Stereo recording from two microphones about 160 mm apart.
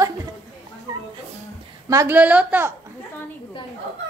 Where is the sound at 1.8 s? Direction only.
15° right (ahead or behind).